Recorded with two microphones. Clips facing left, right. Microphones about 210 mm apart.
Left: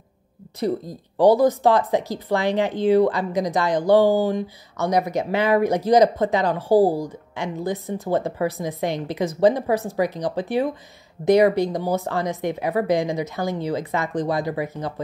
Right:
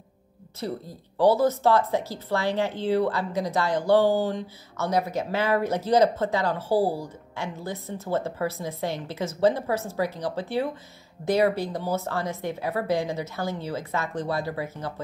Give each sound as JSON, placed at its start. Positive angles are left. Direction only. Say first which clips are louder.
{"t": 0.6, "sound": "speech", "louder": "left 8 dB", "side_deg": 15}